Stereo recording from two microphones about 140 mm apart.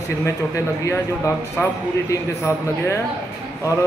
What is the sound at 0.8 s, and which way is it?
A man's voice, 20° left (ahead or behind).